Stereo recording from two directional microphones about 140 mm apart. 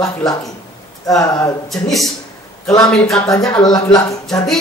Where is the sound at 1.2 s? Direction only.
25° left (ahead or behind).